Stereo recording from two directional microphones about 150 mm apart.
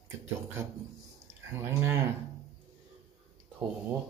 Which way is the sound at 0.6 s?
20° right (ahead or behind).